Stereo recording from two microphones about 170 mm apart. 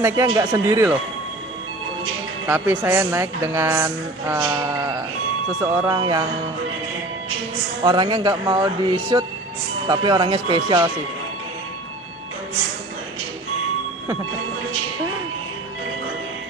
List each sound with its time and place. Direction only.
0.0 s speech: 15° right (ahead or behind)
2.4 s speech: 15° right (ahead or behind)
5.9 s speech: 25° right (ahead or behind)
7.8 s speech: 25° right (ahead or behind)